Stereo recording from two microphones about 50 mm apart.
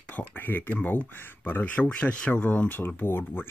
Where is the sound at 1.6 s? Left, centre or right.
Left.